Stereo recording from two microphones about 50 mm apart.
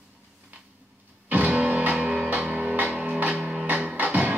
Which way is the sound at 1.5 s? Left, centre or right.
Right.